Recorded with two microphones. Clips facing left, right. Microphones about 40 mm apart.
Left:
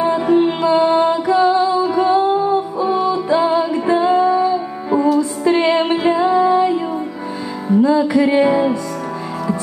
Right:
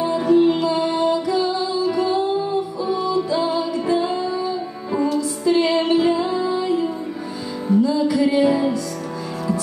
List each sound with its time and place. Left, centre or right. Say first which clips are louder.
0.0 s music: left 2 dB; left